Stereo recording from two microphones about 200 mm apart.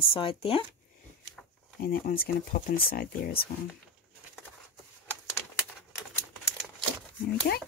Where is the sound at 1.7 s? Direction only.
50° left (ahead or behind).